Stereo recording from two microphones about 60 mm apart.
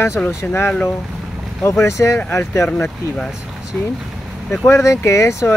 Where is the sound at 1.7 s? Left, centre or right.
Left.